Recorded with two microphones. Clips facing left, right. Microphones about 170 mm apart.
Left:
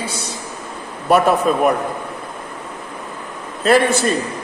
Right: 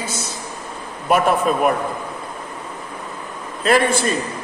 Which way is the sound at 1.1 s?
40° left (ahead or behind).